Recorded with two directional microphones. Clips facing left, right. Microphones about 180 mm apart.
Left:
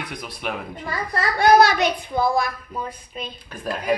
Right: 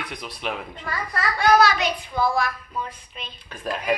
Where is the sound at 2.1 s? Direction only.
20° left (ahead or behind).